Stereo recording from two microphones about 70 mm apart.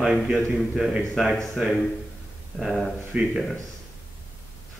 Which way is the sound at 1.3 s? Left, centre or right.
Centre.